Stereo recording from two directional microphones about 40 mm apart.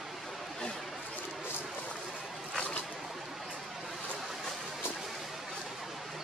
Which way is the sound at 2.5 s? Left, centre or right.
Left.